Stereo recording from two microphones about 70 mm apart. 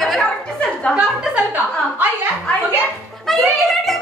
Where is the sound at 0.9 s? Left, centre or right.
Right.